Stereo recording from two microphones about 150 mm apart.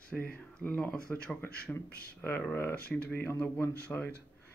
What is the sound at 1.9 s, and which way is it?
Speech, 90° left.